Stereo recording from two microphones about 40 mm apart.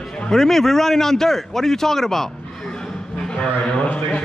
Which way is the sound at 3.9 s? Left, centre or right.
Left.